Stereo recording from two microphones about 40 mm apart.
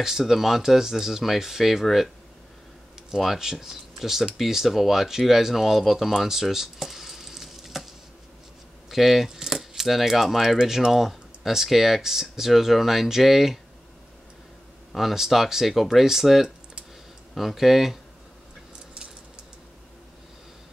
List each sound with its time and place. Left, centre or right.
0.2 s speech: centre
3.0 s a sound: centre
3.3 s speech: centre
8.9 s coin: centre
10.6 s speech: centre
14.9 s speech: centre